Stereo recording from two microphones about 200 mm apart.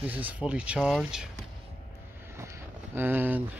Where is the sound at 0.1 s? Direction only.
5° right (ahead or behind).